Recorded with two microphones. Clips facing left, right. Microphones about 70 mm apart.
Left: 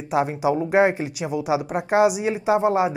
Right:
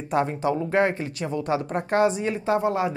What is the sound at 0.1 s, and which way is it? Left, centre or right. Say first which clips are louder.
Speech: left 2 dB; centre.